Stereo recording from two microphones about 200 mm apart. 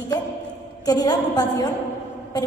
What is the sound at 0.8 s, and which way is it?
Speech, 20° left (ahead or behind).